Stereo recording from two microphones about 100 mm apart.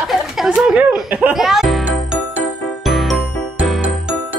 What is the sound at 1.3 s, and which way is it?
Music, centre (ahead or behind).